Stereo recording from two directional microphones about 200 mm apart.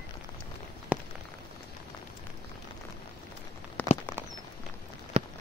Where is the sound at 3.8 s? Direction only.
5° left (ahead or behind).